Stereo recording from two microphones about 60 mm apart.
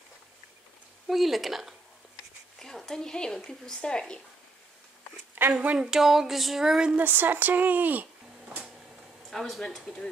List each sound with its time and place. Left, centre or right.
1.0 s speech: centre
2.6 s speech: centre
5.4 s a woman's voice: right
5.8 s speech: centre
7.0 s speech: right
9.3 s speech: centre